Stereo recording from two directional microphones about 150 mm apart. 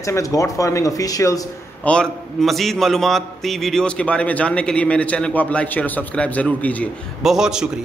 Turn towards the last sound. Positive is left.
turn(degrees=-5)  # may be behind; listen again after turning